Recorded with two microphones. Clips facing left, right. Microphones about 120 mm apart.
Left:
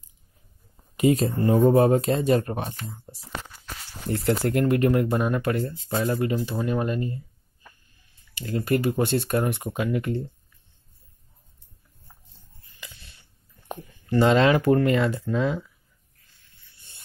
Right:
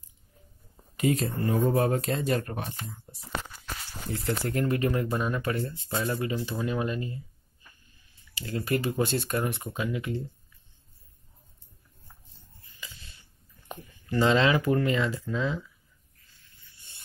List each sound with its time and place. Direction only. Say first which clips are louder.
0.9 s speech: left 6 dB; 20° left (ahead or behind)
4.1 s speech: left 7 dB; 65° left (ahead or behind); by 10.2 s 50° left (ahead or behind)
14.2 s speech: left 4 dB; 45° left (ahead or behind)